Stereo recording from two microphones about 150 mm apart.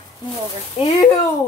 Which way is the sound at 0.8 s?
45° left (ahead or behind).